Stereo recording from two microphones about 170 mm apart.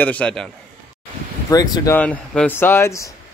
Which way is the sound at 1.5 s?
20° left (ahead or behind).